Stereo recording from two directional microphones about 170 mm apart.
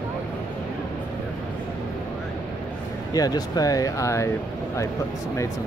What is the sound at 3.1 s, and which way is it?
Speech, 20° left (ahead or behind).